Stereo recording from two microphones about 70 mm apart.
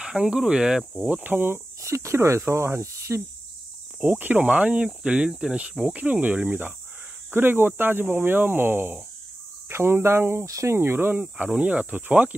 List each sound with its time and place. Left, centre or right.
0.0 s speech: centre
1.0 s speech: right
1.8 s speech: right
4.0 s speech: right
10.4 s speech: right
10.8 s speech: right